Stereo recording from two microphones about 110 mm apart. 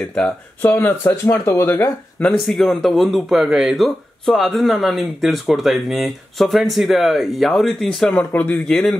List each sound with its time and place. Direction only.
0.6 s speech: 20° left (ahead or behind)
2.3 s speech: centre (ahead or behind)
8.3 s speech: 15° left (ahead or behind)
8.5 s speech: 5° left (ahead or behind)